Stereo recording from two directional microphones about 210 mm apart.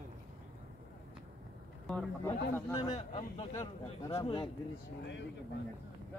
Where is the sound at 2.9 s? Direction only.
25° left (ahead or behind).